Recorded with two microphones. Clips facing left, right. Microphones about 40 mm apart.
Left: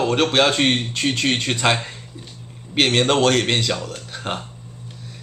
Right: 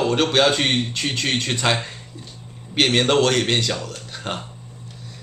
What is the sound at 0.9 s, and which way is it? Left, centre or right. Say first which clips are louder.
Speech: left 3 dB; left.